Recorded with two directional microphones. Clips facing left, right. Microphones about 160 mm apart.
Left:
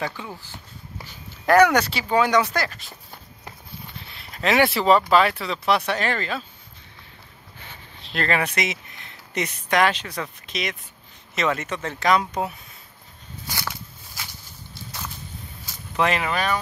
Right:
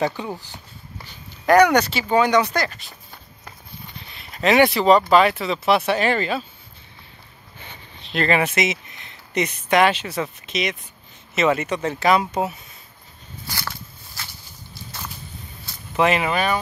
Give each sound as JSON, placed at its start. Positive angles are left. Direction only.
{"t": 0.0, "sound": "speech", "side_deg": -25}
{"t": 0.9, "sound": "speech", "side_deg": 5}
{"t": 4.1, "sound": "a sound", "side_deg": 0}
{"t": 4.7, "sound": "speech", "side_deg": 5}
{"t": 7.5, "sound": "speech", "side_deg": 0}
{"t": 13.5, "sound": "a sound", "side_deg": 15}
{"t": 16.0, "sound": "speech", "side_deg": -10}